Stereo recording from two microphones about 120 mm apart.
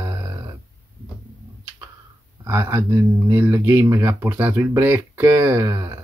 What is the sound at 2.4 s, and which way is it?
Speech, 25° right (ahead or behind).